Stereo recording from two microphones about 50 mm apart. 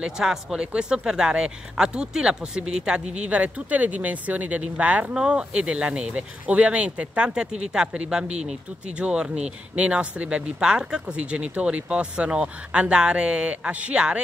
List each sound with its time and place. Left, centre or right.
0.0 s speech: centre; by 10.5 s right
10.6 s speech: centre